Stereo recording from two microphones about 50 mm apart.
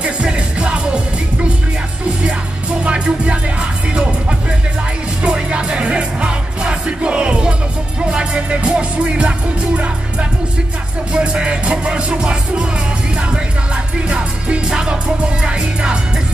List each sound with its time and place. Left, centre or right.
0.0 s music: right
2.8 s music: right
11.1 s music: right